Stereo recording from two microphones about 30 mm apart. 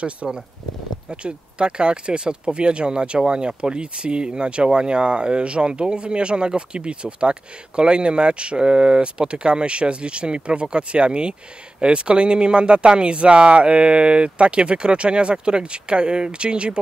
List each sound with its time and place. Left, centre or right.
0.2 s speech: right